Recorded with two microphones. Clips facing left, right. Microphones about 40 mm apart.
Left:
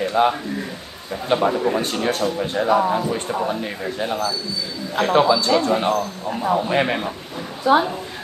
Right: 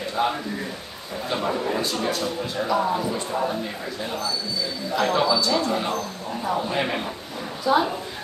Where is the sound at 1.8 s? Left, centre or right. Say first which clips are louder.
Left 4 dB; left; by 7.1 s centre.